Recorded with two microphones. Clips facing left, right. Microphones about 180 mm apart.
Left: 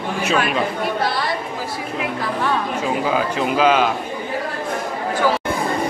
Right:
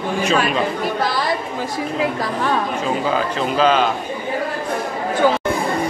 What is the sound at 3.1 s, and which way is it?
Speech, 10° left (ahead or behind).